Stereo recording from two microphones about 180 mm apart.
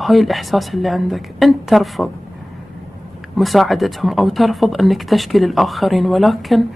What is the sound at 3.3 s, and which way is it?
Speech, centre (ahead or behind).